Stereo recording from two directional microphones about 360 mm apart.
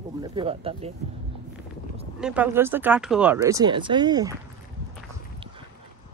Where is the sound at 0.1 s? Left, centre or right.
Centre.